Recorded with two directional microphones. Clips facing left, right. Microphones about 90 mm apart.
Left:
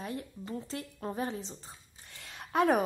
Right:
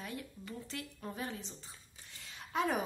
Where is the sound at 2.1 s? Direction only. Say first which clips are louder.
Left 5 dB; 60° left (ahead or behind).